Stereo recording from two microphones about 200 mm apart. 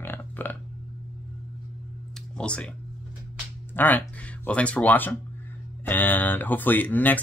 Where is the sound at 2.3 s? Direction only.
5° left (ahead or behind).